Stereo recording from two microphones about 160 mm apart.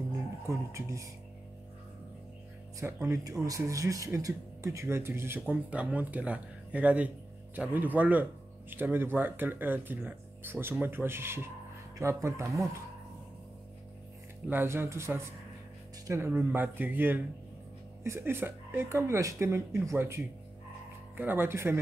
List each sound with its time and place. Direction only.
0.5 s speech: 20° right (ahead or behind)
2.8 s speech: 15° right (ahead or behind)
14.5 s speech: 15° right (ahead or behind)